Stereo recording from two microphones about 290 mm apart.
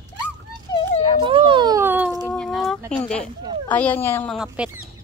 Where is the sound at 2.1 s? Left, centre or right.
Centre.